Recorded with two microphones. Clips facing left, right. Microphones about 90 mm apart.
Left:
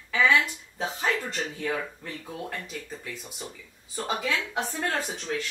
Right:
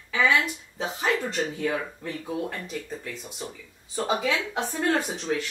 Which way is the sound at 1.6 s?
15° right (ahead or behind).